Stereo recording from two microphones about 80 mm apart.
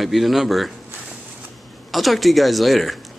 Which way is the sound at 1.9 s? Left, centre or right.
Centre.